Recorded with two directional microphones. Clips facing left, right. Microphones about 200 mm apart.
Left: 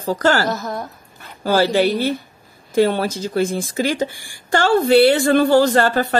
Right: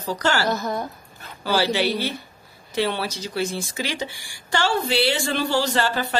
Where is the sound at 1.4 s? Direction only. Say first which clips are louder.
Left 6 dB; 50° left (ahead or behind).